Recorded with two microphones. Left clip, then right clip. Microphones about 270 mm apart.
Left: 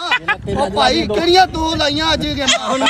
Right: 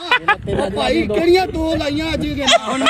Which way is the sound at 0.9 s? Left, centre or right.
Left.